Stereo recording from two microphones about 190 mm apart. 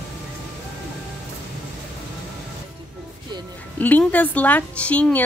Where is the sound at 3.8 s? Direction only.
10° left (ahead or behind).